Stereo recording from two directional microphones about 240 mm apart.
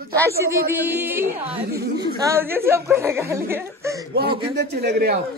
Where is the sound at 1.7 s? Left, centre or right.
Right.